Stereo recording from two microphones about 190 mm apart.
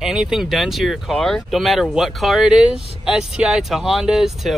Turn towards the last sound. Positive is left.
turn(degrees=0)  # may be behind; listen again after turning